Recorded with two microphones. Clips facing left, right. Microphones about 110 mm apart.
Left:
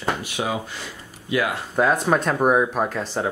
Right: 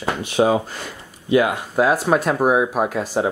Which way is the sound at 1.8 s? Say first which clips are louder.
Right 2 dB; 5° right (ahead or behind).